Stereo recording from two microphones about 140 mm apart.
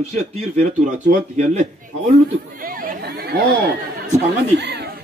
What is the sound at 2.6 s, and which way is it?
Speech, 85° right.